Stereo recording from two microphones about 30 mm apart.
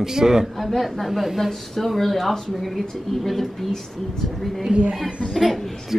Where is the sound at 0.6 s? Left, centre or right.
Centre.